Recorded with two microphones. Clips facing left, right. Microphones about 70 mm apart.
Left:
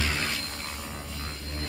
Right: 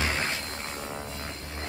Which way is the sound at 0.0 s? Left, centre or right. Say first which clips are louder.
Right 1 dB; right.